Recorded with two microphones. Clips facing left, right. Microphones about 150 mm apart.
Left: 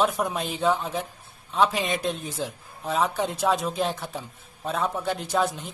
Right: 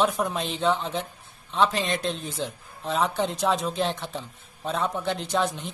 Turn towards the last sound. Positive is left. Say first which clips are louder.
# left 1 dB
turn(degrees=0)  # may be behind; listen again after turning